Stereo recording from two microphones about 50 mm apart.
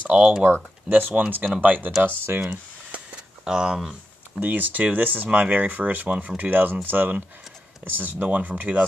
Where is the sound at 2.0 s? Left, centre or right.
Right.